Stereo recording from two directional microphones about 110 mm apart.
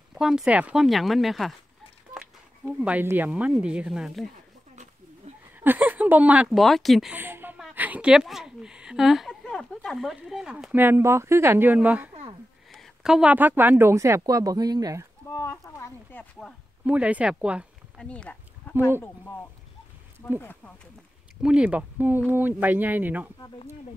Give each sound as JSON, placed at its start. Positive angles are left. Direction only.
{"t": 0.1, "sound": "speech", "side_deg": -5}
{"t": 0.8, "sound": "speech", "side_deg": 0}
{"t": 2.1, "sound": "speech", "side_deg": -10}
{"t": 5.3, "sound": "a sound", "side_deg": -80}
{"t": 5.6, "sound": "speech", "side_deg": -15}
{"t": 6.5, "sound": "speech", "side_deg": 0}
{"t": 7.1, "sound": "a woman's voice", "side_deg": -15}
{"t": 12.7, "sound": "speech", "side_deg": 0}
{"t": 15.2, "sound": "speech", "side_deg": 25}
{"t": 15.8, "sound": "a sound", "side_deg": 15}
{"t": 16.8, "sound": "speech", "side_deg": -10}
{"t": 17.9, "sound": "a sound", "side_deg": 10}
{"t": 20.3, "sound": "a sound", "side_deg": 15}
{"t": 21.4, "sound": "speech", "side_deg": -10}